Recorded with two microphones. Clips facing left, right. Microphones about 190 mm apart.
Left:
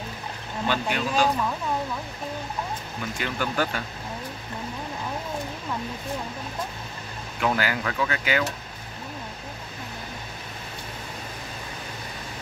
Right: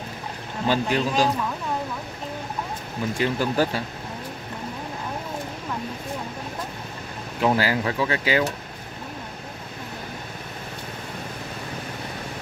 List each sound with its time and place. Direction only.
0.7 s speech: 35° right (ahead or behind)
3.2 s speech: 35° right (ahead or behind)
7.3 s speech: 35° right (ahead or behind)